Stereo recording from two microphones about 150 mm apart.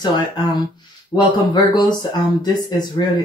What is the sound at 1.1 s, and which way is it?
Speech, 30° left (ahead or behind).